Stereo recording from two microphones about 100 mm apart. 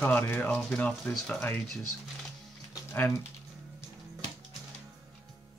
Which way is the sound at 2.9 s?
15° left (ahead or behind).